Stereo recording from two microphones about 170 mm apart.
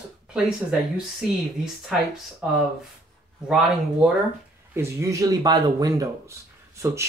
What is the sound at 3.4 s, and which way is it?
Speech, 5° right (ahead or behind).